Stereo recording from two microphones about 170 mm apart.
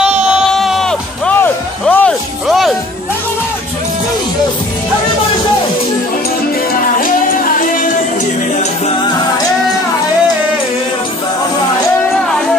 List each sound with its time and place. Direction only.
0.0 s music: 5° right (ahead or behind)
2.4 s music: centre (ahead or behind)
7.0 s music: 55° left (ahead or behind)